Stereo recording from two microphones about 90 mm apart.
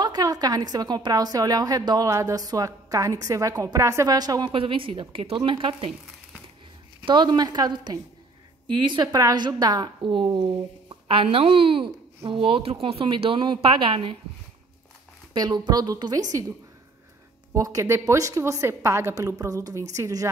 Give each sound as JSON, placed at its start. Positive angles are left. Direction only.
{"t": 0.0, "sound": "a woman's voice", "side_deg": -45}
{"t": 4.5, "sound": "a woman's voice", "side_deg": -75}
{"t": 7.1, "sound": "a woman's voice", "side_deg": -55}
{"t": 10.1, "sound": "speech", "side_deg": -60}
{"t": 11.1, "sound": "speech", "side_deg": -90}
{"t": 15.3, "sound": "a woman's voice", "side_deg": -50}
{"t": 17.6, "sound": "a woman's voice", "side_deg": -40}